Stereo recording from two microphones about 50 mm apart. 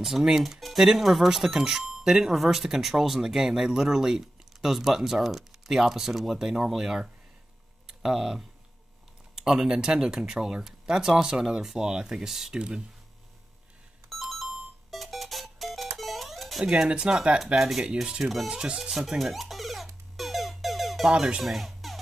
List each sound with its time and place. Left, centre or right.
0.0 s speech: centre
14.0 s music: centre
16.6 s speech: centre
17.6 s speech: centre
18.5 s speech: centre
20.2 s music: centre